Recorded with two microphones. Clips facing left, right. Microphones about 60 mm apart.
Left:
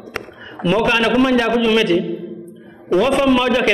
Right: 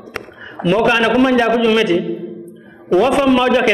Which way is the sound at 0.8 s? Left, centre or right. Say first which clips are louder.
Right 3 dB; centre.